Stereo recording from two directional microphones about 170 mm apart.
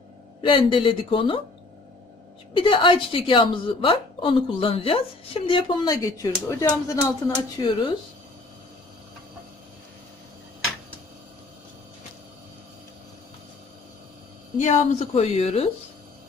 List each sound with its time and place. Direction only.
0.4 s a woman's voice: 30° left (ahead or behind)
2.5 s a woman's voice: 30° left (ahead or behind)
14.6 s a woman's voice: 45° left (ahead or behind)